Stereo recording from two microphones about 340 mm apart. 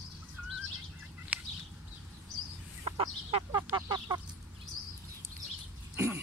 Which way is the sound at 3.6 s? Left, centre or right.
Centre.